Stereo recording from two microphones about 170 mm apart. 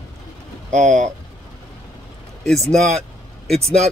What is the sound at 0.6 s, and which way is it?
Speech, 45° right (ahead or behind).